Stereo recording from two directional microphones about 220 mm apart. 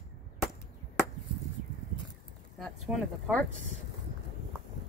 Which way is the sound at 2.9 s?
Centre (ahead or behind).